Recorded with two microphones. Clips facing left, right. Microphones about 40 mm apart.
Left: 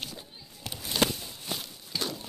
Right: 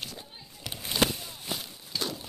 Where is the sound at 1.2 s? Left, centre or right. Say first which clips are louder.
Even; centre.